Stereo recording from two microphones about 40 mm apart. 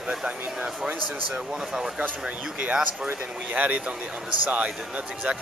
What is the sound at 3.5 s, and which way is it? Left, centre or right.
Speech, right.